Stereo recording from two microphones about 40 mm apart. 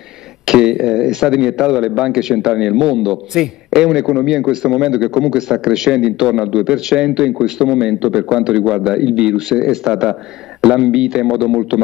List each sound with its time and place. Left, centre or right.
0.5 s a man's voice: centre